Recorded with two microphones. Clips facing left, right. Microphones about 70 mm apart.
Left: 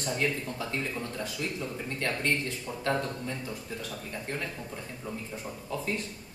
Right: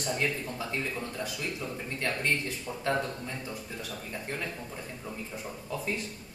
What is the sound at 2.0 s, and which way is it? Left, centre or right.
A man's voice, centre.